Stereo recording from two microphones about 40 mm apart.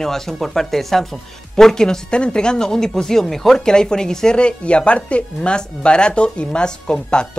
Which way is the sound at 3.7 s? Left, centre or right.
Centre.